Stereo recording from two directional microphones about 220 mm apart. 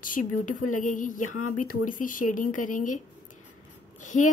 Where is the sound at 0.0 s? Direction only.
35° left (ahead or behind).